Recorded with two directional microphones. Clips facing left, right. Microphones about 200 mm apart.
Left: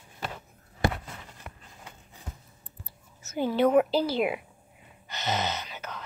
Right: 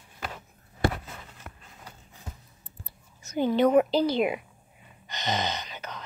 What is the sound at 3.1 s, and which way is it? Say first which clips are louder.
A woman's voice: right 2 dB; 5° left (ahead or behind).